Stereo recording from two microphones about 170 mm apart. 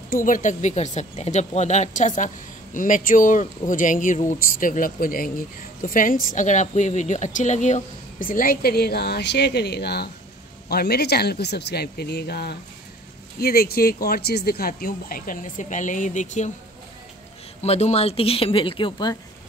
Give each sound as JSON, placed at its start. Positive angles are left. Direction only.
{"t": 0.1, "sound": "a woman's voice", "side_deg": 50}
{"t": 17.6, "sound": "speech", "side_deg": 40}